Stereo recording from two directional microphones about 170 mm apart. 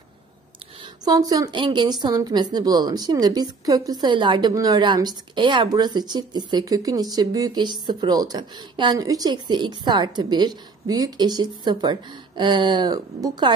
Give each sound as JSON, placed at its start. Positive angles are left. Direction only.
{"t": 1.0, "sound": "a woman's voice", "side_deg": -20}